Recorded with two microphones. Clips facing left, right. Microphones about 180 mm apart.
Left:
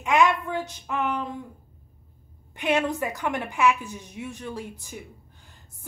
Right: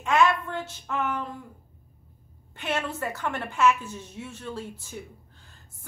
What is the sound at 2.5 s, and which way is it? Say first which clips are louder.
A woman's voice: left 6 dB; 15° left (ahead or behind).